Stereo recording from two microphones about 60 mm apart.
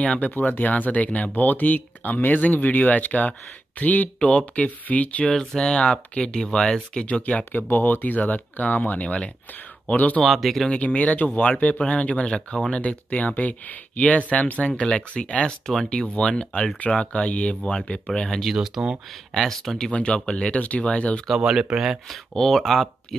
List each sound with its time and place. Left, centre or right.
0.0 s speech: left
5.3 s speech: centre; by 10.2 s left
10.2 s speech: centre
10.7 s speech: left
18.5 s speech: centre
19.3 s speech: centre
19.9 s speech: centre
21.4 s speech: centre
22.1 s speech: centre